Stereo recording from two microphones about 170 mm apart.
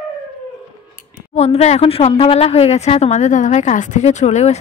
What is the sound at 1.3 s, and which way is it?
A woman's voice, 40° left (ahead or behind).